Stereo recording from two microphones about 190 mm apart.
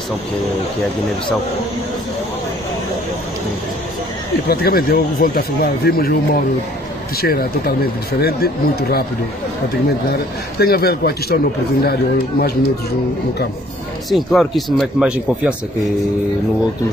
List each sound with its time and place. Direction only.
4.5 s speech: 55° left (ahead or behind)
10.1 s speech: 55° left (ahead or behind)
14.1 s speech: centre (ahead or behind)